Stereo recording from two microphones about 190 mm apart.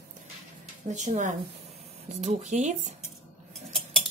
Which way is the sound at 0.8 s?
40° right (ahead or behind).